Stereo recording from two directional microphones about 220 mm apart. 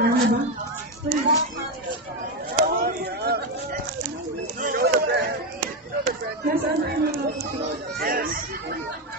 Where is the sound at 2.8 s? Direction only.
45° right (ahead or behind).